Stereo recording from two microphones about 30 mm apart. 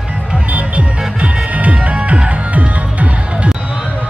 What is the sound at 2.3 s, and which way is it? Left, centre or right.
Music, right.